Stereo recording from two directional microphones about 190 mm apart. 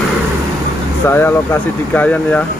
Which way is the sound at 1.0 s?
15° left (ahead or behind).